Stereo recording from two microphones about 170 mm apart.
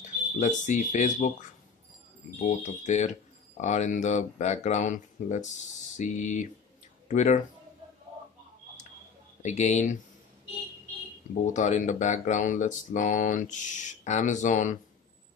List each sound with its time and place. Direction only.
0.0 s speech: 45° left (ahead or behind)
2.3 s speech: 45° left (ahead or behind)
9.4 s speech: 45° left (ahead or behind)
11.4 s speech: 45° left (ahead or behind)